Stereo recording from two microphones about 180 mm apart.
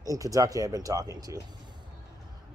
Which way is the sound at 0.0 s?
20° right (ahead or behind).